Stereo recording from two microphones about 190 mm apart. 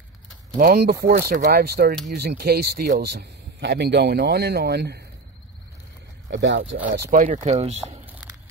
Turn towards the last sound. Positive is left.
turn(degrees=-35)  # may be behind; listen again after turning